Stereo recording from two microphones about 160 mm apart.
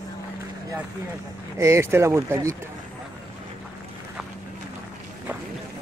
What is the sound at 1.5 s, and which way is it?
Speech, 15° right (ahead or behind).